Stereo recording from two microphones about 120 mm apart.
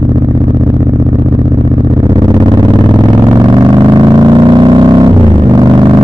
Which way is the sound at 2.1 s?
30° right (ahead or behind).